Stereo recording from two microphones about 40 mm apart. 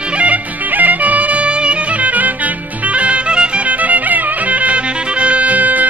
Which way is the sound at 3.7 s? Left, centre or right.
Right.